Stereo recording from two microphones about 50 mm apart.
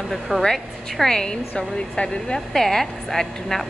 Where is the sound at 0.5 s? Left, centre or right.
Centre.